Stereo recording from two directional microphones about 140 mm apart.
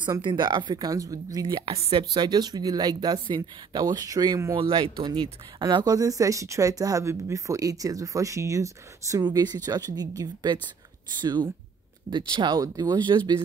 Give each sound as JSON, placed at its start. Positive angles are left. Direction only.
{"t": 0.0, "sound": "speech", "side_deg": -35}
{"t": 1.7, "sound": "speech", "side_deg": -40}
{"t": 4.6, "sound": "speech", "side_deg": -40}